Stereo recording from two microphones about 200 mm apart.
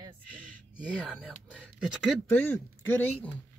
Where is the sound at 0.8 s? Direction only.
5° right (ahead or behind).